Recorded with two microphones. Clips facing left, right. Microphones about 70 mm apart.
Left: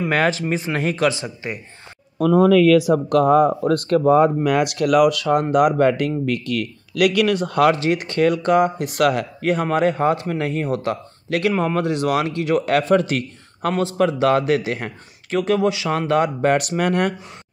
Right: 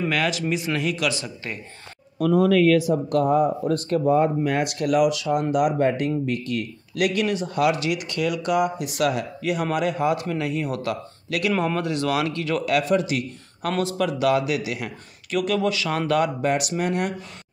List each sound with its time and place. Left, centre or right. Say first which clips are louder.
0.1 s speech: left 4 dB; left
2.8 s speech: left 5 dB; left
5.8 s speech: left 4 dB; left
7.7 s speech: left 5 dB; left
12.6 s speech: left 2 dB; left
13.7 s speech: left 5 dB; left
16.4 s speech: left 5 dB; left